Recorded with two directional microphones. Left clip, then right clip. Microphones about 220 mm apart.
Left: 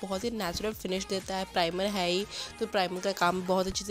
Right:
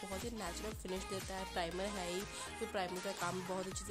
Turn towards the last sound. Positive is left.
turn(degrees=35)  # may be behind; listen again after turning